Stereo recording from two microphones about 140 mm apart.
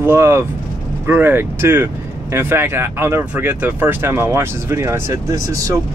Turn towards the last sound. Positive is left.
turn(degrees=-25)  # may be behind; listen again after turning